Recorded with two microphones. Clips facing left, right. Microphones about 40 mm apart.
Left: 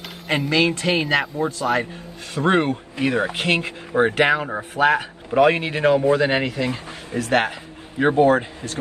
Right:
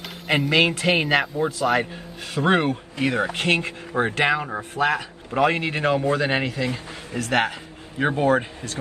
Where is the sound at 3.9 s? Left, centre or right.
Left.